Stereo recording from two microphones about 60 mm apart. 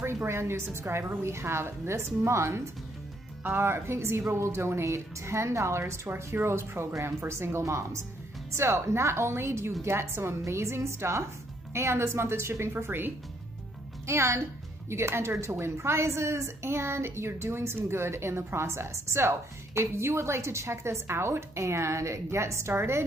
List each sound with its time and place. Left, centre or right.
0.0 s a woman's voice: right
14.0 s a woman's voice: right